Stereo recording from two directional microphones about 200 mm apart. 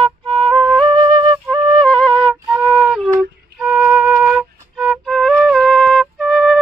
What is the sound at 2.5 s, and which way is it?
Flute, 5° right (ahead or behind).